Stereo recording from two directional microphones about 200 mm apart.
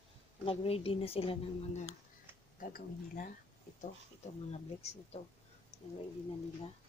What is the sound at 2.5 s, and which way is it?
Speech, 40° left (ahead or behind).